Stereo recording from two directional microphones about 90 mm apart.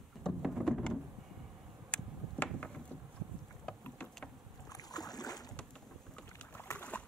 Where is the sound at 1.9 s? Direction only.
15° left (ahead or behind).